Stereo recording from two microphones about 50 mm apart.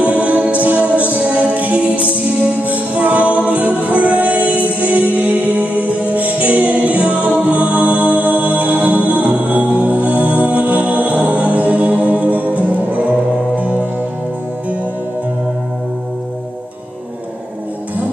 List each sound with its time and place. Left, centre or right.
0.0 s music: right